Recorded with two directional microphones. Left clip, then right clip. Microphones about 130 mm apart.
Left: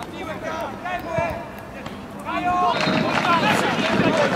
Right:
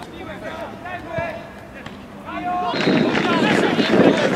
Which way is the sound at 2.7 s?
Centre (ahead or behind).